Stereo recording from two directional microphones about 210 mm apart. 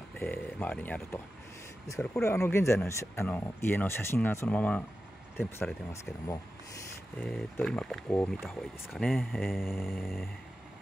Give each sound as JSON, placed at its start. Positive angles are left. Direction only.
{"t": 0.2, "sound": "speech", "side_deg": 5}
{"t": 7.2, "sound": "speech", "side_deg": 0}